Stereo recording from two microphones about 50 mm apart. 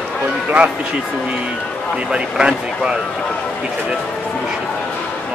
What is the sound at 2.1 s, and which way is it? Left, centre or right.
Speech, centre.